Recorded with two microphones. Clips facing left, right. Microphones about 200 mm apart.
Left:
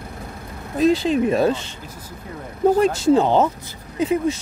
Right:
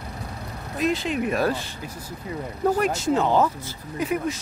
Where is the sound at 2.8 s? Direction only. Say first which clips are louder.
Left 6 dB; 30° left (ahead or behind).